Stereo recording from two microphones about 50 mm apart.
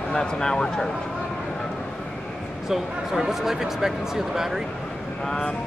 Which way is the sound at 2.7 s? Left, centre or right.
Centre.